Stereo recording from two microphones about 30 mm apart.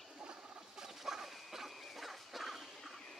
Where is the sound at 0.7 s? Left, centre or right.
Centre.